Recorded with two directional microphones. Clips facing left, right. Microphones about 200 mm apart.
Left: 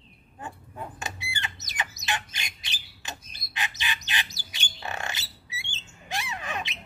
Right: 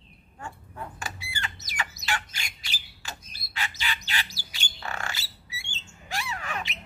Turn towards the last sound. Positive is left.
turn(degrees=20)  # may be behind; listen again after turning